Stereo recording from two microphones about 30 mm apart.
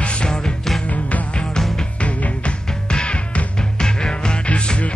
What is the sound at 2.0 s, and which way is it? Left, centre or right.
Music, left.